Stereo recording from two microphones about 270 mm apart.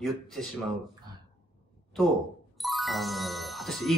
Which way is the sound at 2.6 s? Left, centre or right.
Centre.